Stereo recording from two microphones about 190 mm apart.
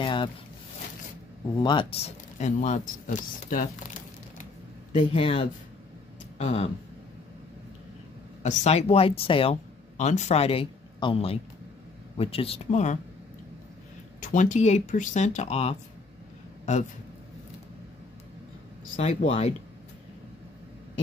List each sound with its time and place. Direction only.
0.0 s a sound: 25° left (ahead or behind)
1.6 s speech: 25° left (ahead or behind); by 3.6 s 45° left (ahead or behind)
5.0 s speech: 30° left (ahead or behind)
8.4 s speech: 35° left (ahead or behind)
14.3 s speech: 40° left (ahead or behind)
18.9 s speech: 35° left (ahead or behind)